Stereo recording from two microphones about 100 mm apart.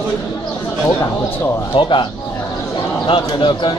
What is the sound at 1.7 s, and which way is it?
Speech, 55° left (ahead or behind).